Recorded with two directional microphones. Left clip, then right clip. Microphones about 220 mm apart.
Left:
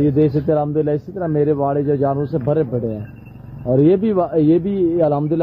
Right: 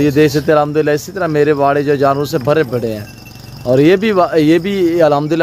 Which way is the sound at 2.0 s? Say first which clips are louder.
Right 6 dB; 25° right (ahead or behind).